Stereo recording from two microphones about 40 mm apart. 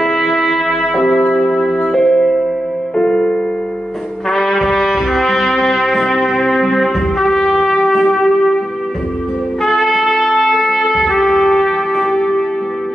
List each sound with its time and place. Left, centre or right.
0.0 s music: centre
4.3 s trumpet: centre
9.7 s music: centre